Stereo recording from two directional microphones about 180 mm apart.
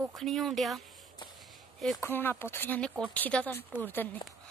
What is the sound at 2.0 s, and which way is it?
Speech, 10° left (ahead or behind).